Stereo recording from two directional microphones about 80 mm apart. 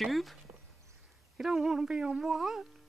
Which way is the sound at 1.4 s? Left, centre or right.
Centre.